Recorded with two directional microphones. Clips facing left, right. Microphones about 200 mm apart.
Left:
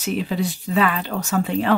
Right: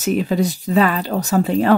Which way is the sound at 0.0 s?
45° right (ahead or behind).